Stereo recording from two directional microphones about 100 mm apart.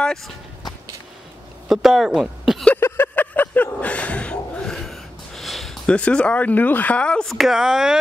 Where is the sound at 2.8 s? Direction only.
20° left (ahead or behind); by 5.9 s centre (ahead or behind).